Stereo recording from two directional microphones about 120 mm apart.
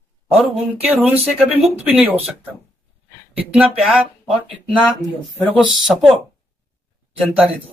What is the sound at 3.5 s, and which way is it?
Speech, 10° right (ahead or behind).